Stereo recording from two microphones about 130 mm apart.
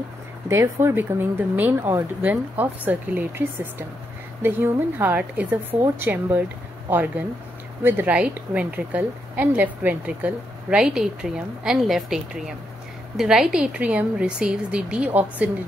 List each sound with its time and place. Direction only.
0.5 s speech: 20° right (ahead or behind)